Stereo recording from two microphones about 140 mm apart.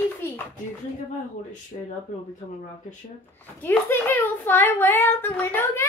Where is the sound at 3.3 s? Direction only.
15° left (ahead or behind).